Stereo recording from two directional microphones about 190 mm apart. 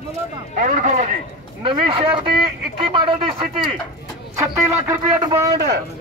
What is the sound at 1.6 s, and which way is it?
Speech, 25° right (ahead or behind).